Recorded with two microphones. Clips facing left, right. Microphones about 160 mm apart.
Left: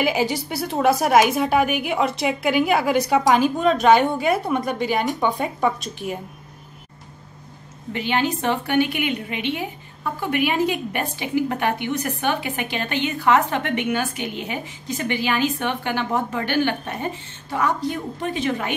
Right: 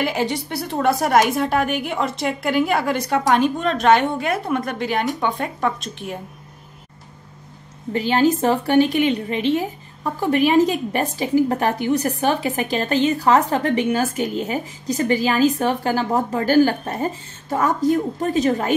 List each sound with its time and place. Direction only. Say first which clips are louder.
0.0 s a woman's voice: left 1 dB; centre (ahead or behind)
7.9 s a woman's voice: right 5 dB; 40° right (ahead or behind)